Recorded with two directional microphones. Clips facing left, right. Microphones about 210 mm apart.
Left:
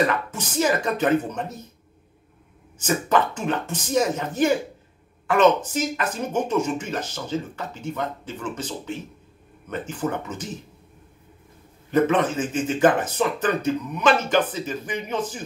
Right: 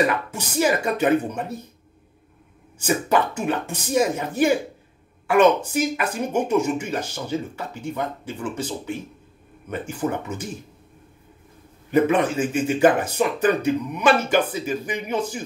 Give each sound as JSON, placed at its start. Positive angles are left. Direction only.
{"t": 0.0, "sound": "speech", "side_deg": -10}
{"t": 2.8, "sound": "speech", "side_deg": -10}
{"t": 11.9, "sound": "speech", "side_deg": -10}